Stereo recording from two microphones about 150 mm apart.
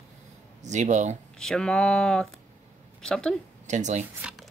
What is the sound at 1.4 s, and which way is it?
Speech, 5° left (ahead or behind).